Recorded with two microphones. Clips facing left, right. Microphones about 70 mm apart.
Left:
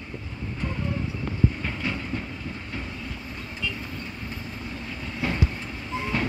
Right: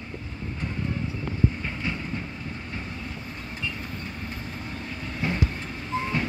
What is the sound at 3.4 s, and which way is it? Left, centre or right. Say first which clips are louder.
Vehicle: left 1 dB; right.